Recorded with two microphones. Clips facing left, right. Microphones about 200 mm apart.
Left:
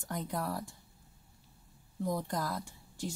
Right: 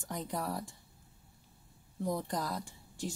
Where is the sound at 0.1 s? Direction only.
Centre (ahead or behind).